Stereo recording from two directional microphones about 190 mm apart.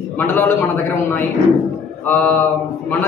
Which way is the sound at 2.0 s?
10° left (ahead or behind).